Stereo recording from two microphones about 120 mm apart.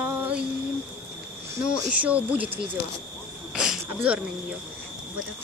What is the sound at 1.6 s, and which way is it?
Speech, 10° right (ahead or behind).